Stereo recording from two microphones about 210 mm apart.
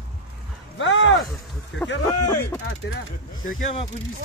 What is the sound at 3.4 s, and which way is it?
Speech, 40° left (ahead or behind).